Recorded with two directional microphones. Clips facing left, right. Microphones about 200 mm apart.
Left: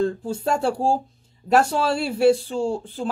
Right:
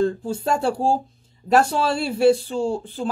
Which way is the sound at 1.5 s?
5° left (ahead or behind).